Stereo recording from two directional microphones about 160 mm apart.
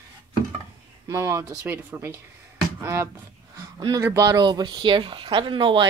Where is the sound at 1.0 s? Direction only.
20° right (ahead or behind).